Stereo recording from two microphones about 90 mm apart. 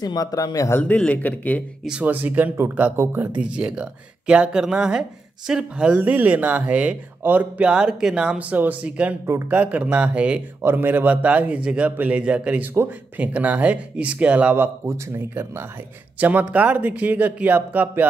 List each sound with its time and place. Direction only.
0.0 s a man's voice: 45° left (ahead or behind)
0.7 s speech: 20° left (ahead or behind)
1.9 s speech: 15° right (ahead or behind)
9.2 s speech: 30° right (ahead or behind)
9.5 s speech: 15° right (ahead or behind)
10.6 s speech: 25° right (ahead or behind)
16.2 s speech: 20° right (ahead or behind)